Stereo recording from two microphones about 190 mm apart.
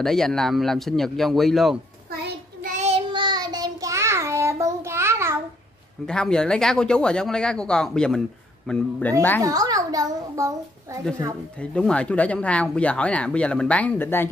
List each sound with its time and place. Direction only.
0.0 s speech: centre (ahead or behind)
2.0 s child singing: 50° right (ahead or behind); by 5.3 s 15° right (ahead or behind)
6.0 s speech: 5° left (ahead or behind)
9.4 s a child's voice: 20° right (ahead or behind)
11.6 s speech: 5° left (ahead or behind)